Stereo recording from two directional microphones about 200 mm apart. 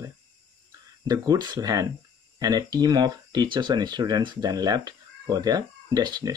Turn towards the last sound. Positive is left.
turn(degrees=-20)  # may be behind; listen again after turning